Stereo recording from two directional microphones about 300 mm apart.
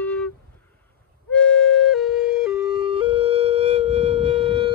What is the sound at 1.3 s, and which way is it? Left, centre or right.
Flute, centre.